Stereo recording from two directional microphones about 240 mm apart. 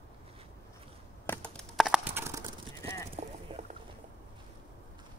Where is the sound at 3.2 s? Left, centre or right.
Right.